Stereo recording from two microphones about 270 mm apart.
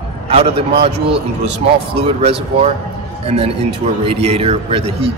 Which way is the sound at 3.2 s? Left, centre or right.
Right.